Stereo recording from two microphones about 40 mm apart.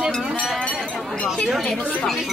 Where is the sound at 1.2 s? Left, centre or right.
Centre.